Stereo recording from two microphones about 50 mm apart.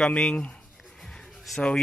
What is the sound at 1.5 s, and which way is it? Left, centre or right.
Speech, centre.